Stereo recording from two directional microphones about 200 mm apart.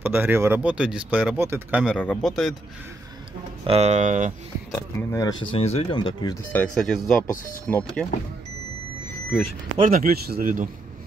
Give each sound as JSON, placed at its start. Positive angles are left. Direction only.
{"t": 0.0, "sound": "speech", "side_deg": -10}
{"t": 3.6, "sound": "speech", "side_deg": -30}
{"t": 5.1, "sound": "speech", "side_deg": 20}
{"t": 6.5, "sound": "speech", "side_deg": 5}
{"t": 9.8, "sound": "speech", "side_deg": -45}